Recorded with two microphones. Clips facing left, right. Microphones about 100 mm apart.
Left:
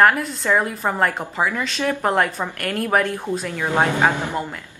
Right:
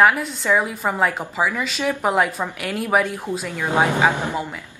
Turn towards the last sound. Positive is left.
turn(degrees=0)  # may be behind; listen again after turning